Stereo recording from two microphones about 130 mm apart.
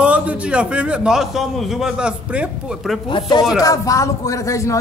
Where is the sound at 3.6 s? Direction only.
25° left (ahead or behind).